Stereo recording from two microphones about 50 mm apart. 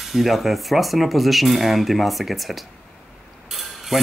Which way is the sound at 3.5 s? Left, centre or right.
Centre.